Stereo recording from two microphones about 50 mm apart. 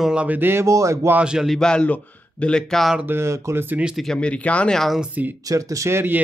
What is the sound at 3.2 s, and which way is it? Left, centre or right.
Speech, right.